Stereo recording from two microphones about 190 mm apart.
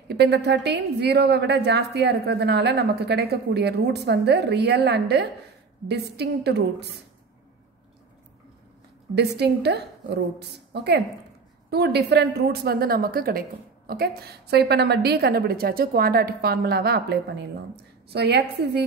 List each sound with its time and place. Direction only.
0.1 s a woman's voice: 60° right (ahead or behind)
9.1 s a woman's voice: 60° right (ahead or behind)